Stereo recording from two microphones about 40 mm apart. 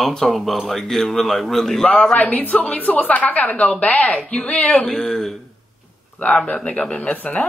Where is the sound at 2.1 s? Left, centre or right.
Left.